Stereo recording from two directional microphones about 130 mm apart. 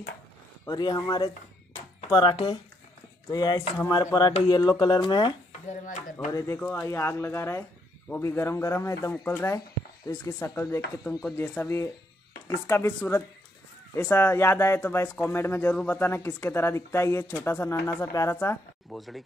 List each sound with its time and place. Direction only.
0.7 s speech: 30° left (ahead or behind)
2.3 s speech: 35° left (ahead or behind)
5.7 s speech: 70° left (ahead or behind)
6.3 s speech: 20° left (ahead or behind)
18.9 s speech: centre (ahead or behind)